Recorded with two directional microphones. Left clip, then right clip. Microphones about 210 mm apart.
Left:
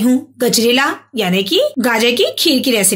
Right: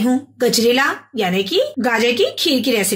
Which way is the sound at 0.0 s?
25° left (ahead or behind).